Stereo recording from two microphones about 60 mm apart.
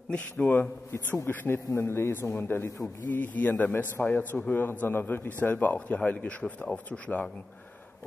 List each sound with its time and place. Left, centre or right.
0.1 s speech: left
1.8 s speech: left; by 6.8 s centre
6.9 s speech: left